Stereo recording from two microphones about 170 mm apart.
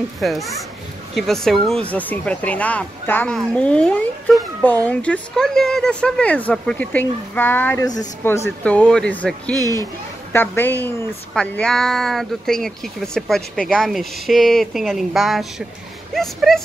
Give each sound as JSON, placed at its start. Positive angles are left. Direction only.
{"t": 0.2, "sound": "speech", "side_deg": 0}
{"t": 9.6, "sound": "speech", "side_deg": -20}
{"t": 10.3, "sound": "speech", "side_deg": 10}